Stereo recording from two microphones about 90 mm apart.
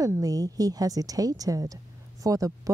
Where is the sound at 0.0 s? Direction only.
40° right (ahead or behind).